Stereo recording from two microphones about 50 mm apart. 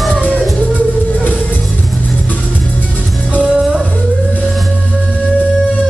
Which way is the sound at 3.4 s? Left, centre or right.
Centre.